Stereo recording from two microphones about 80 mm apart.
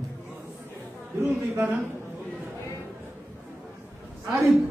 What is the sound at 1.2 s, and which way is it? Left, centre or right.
Speech, right.